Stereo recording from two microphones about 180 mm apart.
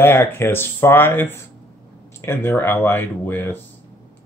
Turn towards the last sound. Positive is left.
turn(degrees=10)  # may be behind; listen again after turning